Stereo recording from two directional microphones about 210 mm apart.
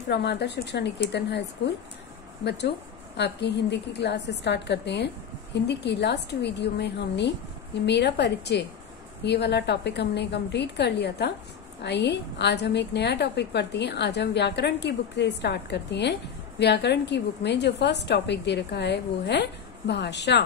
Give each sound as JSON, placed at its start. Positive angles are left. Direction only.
{"t": 0.1, "sound": "a woman's voice", "side_deg": 55}
{"t": 2.4, "sound": "a woman's voice", "side_deg": 55}